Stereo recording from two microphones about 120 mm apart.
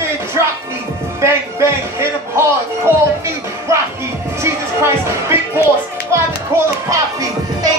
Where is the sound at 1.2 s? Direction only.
20° right (ahead or behind).